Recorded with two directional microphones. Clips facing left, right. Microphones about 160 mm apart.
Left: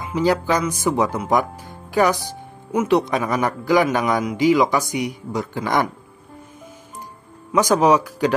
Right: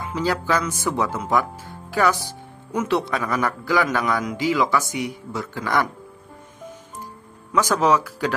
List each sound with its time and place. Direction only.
0.0 s speech: 15° left (ahead or behind)
7.5 s speech: 15° left (ahead or behind)